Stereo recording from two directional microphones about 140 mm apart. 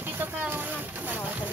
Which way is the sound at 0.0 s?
15° right (ahead or behind).